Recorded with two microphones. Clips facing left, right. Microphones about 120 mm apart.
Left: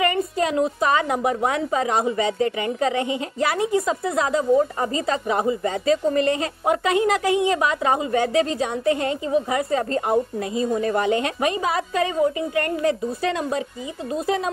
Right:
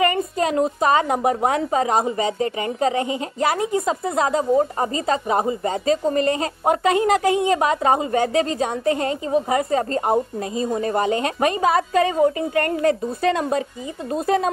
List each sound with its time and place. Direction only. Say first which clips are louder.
0.0 s a woman's voice: right 1 dB; 40° right (ahead or behind)